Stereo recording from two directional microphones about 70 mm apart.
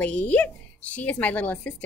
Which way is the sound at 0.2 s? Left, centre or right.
Left.